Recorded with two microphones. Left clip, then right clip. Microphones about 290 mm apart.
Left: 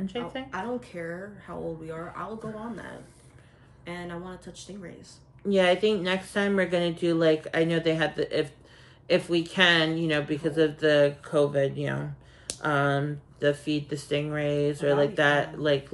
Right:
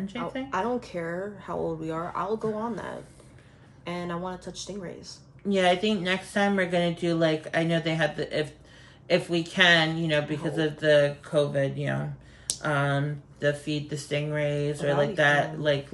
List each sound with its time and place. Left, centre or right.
0.0 s speech: centre
0.5 s speech: centre
5.5 s speech: centre